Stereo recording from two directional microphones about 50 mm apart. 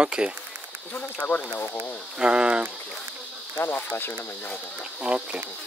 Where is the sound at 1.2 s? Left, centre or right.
Left.